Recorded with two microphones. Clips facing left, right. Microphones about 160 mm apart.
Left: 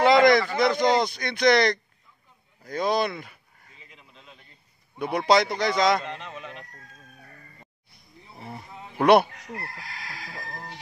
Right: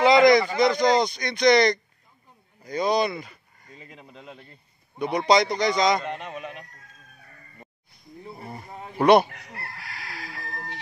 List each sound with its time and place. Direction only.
0.0 s speech: centre (ahead or behind)
3.8 s a sound: 45° right (ahead or behind)
4.9 s speech: 5° left (ahead or behind)
8.4 s wild animals: centre (ahead or behind)
8.6 s wild animals: 50° right (ahead or behind)
8.9 s speech: 5° left (ahead or behind)